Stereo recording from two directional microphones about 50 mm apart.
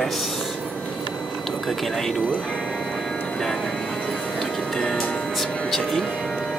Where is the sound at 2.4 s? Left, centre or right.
Centre.